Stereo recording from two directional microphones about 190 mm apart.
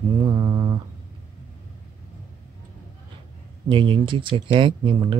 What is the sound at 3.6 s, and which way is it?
Speech, 25° right (ahead or behind).